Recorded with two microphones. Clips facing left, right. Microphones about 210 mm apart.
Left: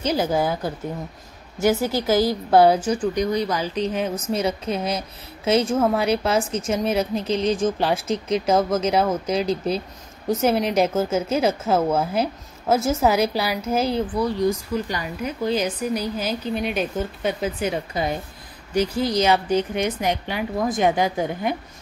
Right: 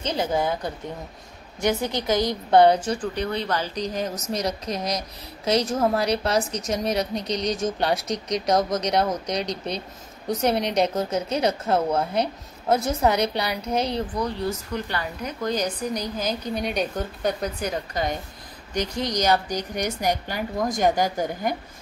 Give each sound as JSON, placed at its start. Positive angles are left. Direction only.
{"t": 0.0, "sound": "a woman's voice", "side_deg": 5}